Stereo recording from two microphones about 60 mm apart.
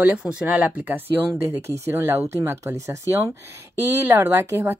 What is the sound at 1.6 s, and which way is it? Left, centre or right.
Speech, right.